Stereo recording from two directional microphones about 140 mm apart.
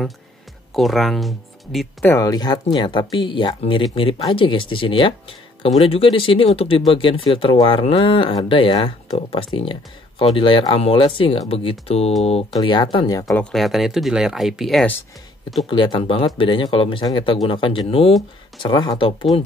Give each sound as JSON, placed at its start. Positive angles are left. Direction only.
{"t": 0.7, "sound": "speech", "side_deg": 0}
{"t": 2.0, "sound": "speech", "side_deg": 25}
{"t": 12.5, "sound": "speech", "side_deg": 30}
{"t": 13.3, "sound": "speech", "side_deg": 5}
{"t": 15.7, "sound": "speech", "side_deg": 35}